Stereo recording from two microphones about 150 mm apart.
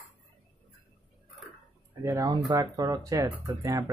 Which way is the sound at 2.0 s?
20° right (ahead or behind).